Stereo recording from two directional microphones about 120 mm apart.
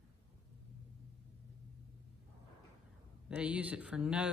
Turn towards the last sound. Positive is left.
turn(degrees=-10)  # may be behind; listen again after turning